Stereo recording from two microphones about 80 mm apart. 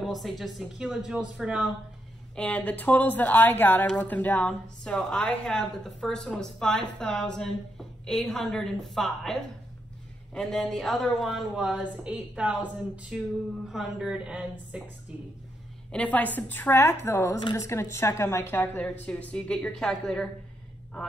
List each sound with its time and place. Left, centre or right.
0.0 s a woman's voice: centre
2.3 s a woman's voice: centre
11.8 s a woman's voice: centre
13.7 s a woman's voice: centre
15.9 s a woman's voice: centre; by 18.6 s left
18.6 s a woman's voice: centre